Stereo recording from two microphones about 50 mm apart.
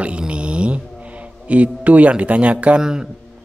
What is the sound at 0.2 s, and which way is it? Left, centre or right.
Mantra, right.